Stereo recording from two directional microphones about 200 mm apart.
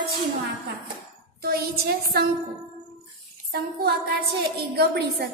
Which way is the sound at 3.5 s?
50° right (ahead or behind).